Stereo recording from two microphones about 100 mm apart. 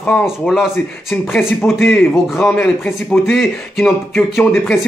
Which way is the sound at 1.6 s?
20° left (ahead or behind).